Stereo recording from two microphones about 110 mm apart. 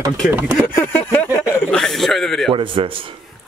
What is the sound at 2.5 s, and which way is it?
Speech, 50° right (ahead or behind).